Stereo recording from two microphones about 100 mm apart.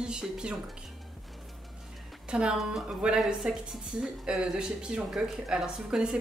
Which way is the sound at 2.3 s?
10° right (ahead or behind).